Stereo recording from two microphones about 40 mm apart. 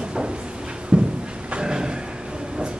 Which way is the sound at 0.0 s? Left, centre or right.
Right.